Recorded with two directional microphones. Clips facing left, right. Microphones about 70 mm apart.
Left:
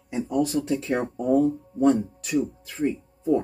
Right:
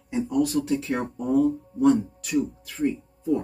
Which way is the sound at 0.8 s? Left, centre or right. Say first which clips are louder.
Left 3 dB; left.